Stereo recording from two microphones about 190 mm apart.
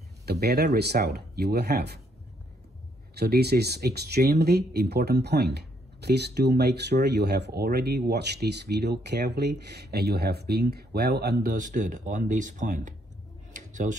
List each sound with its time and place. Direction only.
0.2 s speech: 55° right (ahead or behind)
3.2 s speech: 60° right (ahead or behind); by 12.9 s 40° right (ahead or behind)
13.5 s a sound: 40° right (ahead or behind)